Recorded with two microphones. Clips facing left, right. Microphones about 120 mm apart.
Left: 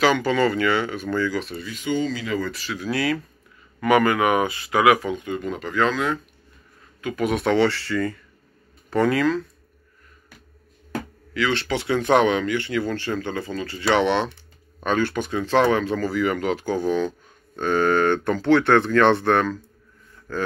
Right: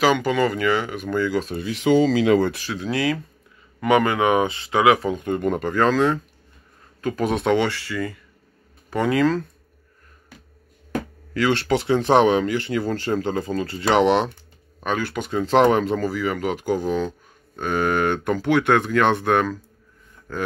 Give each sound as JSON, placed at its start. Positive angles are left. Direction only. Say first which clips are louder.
{"t": 0.0, "sound": "speech", "louder": "even", "side_deg": -15}
{"t": 1.7, "sound": "speech", "louder": "right 8 dB", "side_deg": -90}
{"t": 2.7, "sound": "speech", "louder": "right 1 dB", "side_deg": -25}
{"t": 5.1, "sound": "speech", "louder": "right 5 dB", "side_deg": -50}
{"t": 7.4, "sound": "speech", "louder": "left 3 dB", "side_deg": -15}
{"t": 11.3, "sound": "speech", "louder": "right 3 dB", "side_deg": -40}
{"t": 11.9, "sound": "speech", "louder": "right 2 dB", "side_deg": -30}
{"t": 14.8, "sound": "speech", "louder": "left 2 dB", "side_deg": -5}
{"t": 16.1, "sound": "speech", "louder": "left 2 dB", "side_deg": -5}